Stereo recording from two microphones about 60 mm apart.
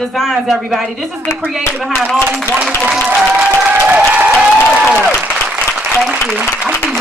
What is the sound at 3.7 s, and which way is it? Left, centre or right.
Applause, right.